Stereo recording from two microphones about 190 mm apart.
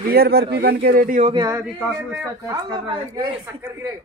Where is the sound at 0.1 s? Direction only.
55° right (ahead or behind).